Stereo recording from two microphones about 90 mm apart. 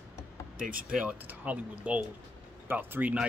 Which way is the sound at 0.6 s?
10° right (ahead or behind).